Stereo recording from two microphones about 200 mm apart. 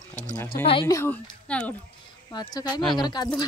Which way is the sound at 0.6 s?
20° left (ahead or behind).